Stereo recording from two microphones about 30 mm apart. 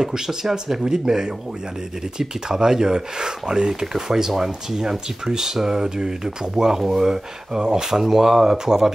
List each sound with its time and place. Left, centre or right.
0.0 s speech: right
6.8 s speech: centre
7.6 s speech: right
8.0 s speech: centre